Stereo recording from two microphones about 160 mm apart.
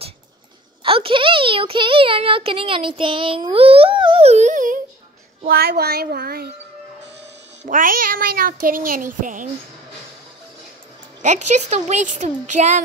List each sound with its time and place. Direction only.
0.8 s speech: 35° right (ahead or behind); by 4.7 s 50° right (ahead or behind)
5.4 s speech: 70° right (ahead or behind)
7.6 s a child's voice: 60° right (ahead or behind)
11.2 s a woman's voice: 45° right (ahead or behind)